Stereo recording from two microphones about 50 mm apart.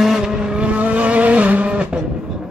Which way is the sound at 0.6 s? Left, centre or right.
Right.